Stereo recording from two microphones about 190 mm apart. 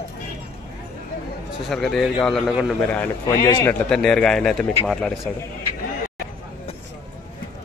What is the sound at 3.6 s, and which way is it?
A man's voice, 5° left (ahead or behind).